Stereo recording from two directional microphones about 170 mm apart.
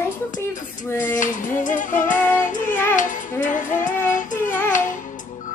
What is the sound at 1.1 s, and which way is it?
Music, 50° left (ahead or behind).